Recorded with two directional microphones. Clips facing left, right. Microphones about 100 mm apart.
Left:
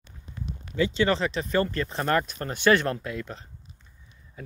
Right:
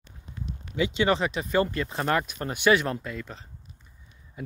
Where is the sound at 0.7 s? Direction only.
15° right (ahead or behind).